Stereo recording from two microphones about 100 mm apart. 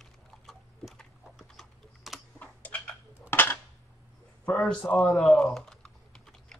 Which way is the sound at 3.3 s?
20° left (ahead or behind).